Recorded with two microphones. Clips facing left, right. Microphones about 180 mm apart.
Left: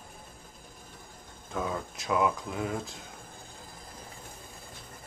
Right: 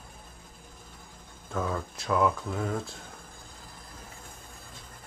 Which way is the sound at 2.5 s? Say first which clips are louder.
Right 1 dB; 5° left (ahead or behind).